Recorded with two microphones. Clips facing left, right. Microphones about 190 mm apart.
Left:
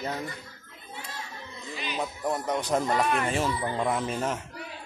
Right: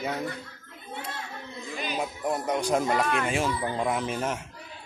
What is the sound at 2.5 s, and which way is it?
Speech, centre (ahead or behind).